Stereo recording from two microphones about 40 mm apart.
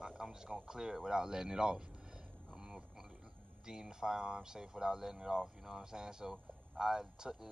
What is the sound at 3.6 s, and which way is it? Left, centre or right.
Speech, centre.